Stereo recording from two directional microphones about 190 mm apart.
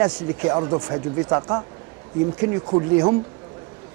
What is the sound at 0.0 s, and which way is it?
Speech, 15° right (ahead or behind).